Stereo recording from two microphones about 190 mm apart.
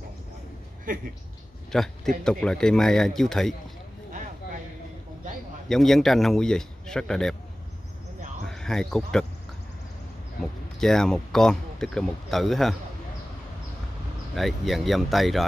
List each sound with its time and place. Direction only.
0.9 s speech: 45° right (ahead or behind)
1.7 s speech: centre (ahead or behind)
5.7 s speech: centre (ahead or behind)
8.5 s speech: 5° left (ahead or behind)
10.4 s speech: centre (ahead or behind)
14.3 s speech: centre (ahead or behind)